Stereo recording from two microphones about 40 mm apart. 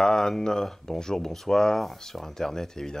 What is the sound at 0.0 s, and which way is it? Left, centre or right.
Speech, centre.